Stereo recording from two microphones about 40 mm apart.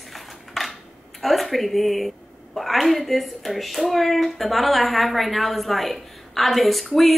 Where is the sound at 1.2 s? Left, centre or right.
Centre.